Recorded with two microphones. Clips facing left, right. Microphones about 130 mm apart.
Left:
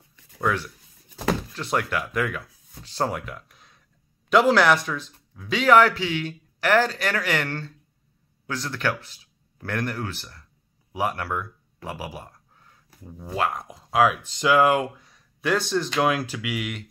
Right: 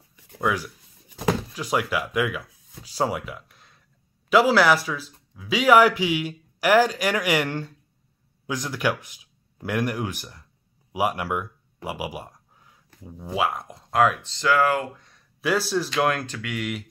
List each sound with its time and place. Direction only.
0.1 s writing: 10° right (ahead or behind)
1.5 s a man's voice: 5° right (ahead or behind)
10.9 s a sound: 10° right (ahead or behind)
12.9 s speech: centre (ahead or behind)
14.2 s speech: 15° left (ahead or behind)
15.0 s speech: centre (ahead or behind)